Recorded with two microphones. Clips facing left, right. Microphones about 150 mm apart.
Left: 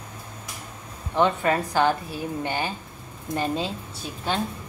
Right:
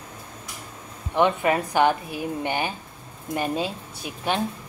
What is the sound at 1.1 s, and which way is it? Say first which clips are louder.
Speech: right 1 dB; 15° right (ahead or behind).